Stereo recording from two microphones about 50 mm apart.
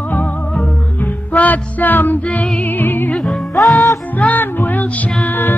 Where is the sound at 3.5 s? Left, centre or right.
Centre.